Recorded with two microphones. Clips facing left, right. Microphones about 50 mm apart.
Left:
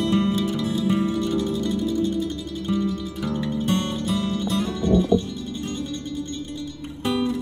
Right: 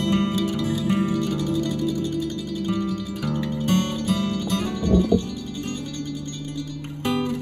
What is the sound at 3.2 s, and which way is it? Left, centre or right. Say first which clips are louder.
Music: left 1 dB; left.